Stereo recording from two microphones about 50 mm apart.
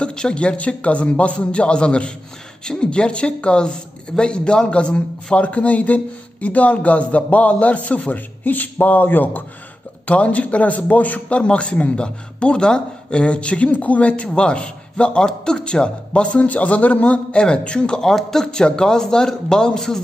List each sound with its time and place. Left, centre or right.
0.0 s a man's voice: centre; by 9.4 s left
10.0 s a man's voice: left